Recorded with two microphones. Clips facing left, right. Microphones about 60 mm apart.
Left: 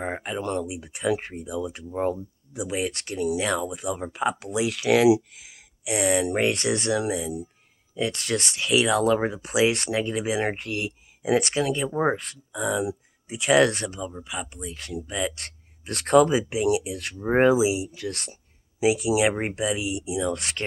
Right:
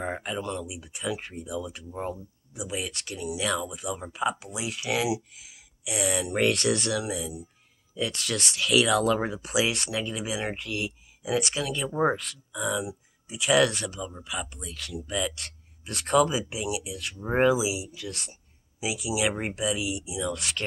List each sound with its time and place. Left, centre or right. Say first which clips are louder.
0.0 s a sound: left 2 dB; left
0.4 s speech: left 5 dB; left
2.0 s speech: left 8 dB; left
7.9 s speech: left 4 dB; left
17.2 s speech: left 4 dB; left